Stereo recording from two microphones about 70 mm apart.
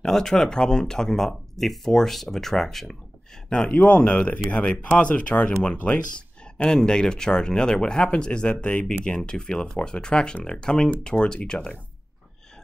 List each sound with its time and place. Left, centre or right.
0.0 s speech: centre
3.7 s speech: left